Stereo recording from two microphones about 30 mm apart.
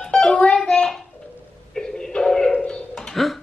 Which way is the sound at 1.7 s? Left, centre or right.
Left.